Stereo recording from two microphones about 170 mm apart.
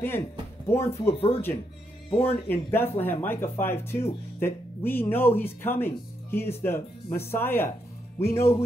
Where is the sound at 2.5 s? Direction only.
10° left (ahead or behind).